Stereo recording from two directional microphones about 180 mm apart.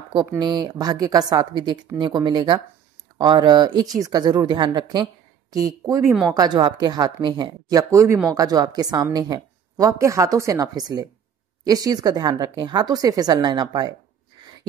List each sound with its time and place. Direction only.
0.4 s a woman's voice: 25° right (ahead or behind)